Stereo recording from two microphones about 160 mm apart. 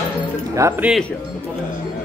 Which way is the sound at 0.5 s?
20° right (ahead or behind).